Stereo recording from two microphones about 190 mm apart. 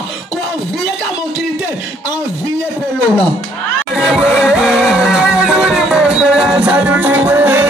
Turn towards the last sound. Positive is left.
turn(degrees=-10)  # may be behind; listen again after turning